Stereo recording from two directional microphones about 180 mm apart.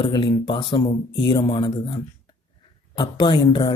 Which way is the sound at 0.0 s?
25° left (ahead or behind).